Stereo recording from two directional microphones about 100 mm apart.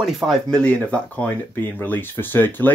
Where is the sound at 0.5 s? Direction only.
10° left (ahead or behind).